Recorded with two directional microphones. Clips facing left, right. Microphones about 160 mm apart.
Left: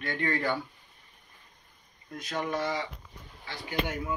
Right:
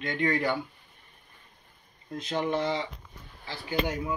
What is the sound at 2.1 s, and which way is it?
Speech, 25° right (ahead or behind).